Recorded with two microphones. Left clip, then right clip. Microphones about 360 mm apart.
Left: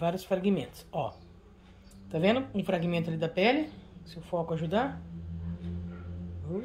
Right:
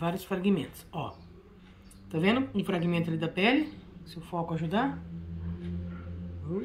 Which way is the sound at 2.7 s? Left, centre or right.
Left.